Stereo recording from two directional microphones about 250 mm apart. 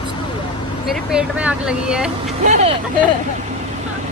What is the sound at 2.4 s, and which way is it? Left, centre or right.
Speech, right.